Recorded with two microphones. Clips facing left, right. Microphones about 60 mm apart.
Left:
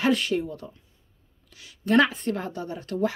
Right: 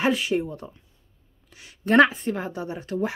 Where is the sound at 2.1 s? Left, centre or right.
Centre.